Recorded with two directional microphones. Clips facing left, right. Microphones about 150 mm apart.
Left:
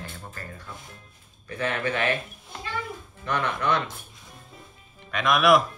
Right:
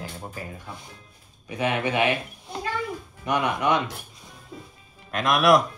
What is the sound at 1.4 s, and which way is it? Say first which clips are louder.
Speech: right 3 dB; 15° right (ahead or behind).